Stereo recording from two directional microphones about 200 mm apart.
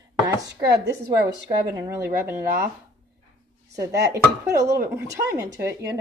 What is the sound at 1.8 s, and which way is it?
Speech, 15° right (ahead or behind).